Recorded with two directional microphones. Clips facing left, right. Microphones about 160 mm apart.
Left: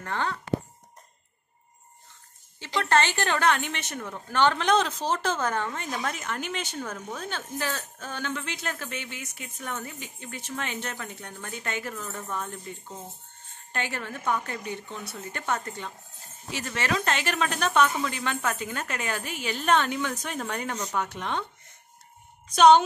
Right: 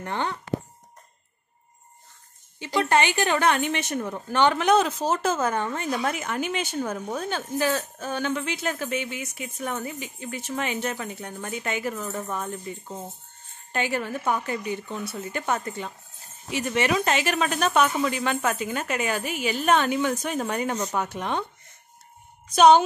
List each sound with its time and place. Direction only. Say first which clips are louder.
0.0 s speech: right 2 dB; 20° right (ahead or behind)
2.8 s speech: right 2 dB; 15° right (ahead or behind)
11.9 s speech: right 4 dB; 20° right (ahead or behind)
22.5 s speech: right 1 dB; 5° right (ahead or behind)